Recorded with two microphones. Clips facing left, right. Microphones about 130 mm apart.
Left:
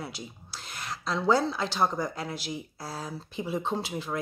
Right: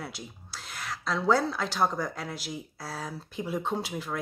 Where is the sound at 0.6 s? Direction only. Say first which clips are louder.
Even; centre (ahead or behind).